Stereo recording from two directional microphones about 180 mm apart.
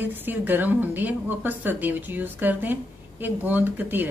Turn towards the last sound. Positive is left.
turn(degrees=-10)  # may be behind; listen again after turning